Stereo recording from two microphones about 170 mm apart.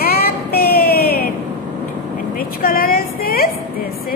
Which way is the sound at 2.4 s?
60° left (ahead or behind).